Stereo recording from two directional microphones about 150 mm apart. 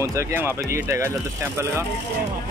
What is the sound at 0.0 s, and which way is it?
Speech, 20° right (ahead or behind).